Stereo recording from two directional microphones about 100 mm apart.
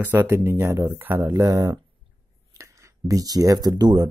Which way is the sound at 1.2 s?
35° right (ahead or behind).